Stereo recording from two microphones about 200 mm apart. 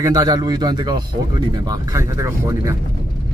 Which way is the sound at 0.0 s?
20° right (ahead or behind).